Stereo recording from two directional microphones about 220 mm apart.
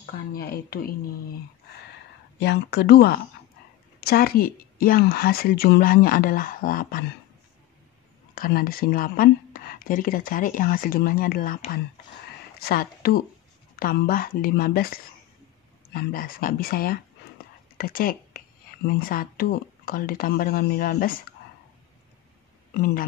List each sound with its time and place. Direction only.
0.0 s speech: 40° left (ahead or behind)
2.3 s speech: 50° left (ahead or behind)
8.4 s a woman's voice: 40° left (ahead or behind)